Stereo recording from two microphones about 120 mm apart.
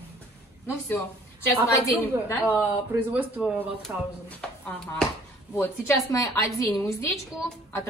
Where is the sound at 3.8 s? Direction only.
10° left (ahead or behind).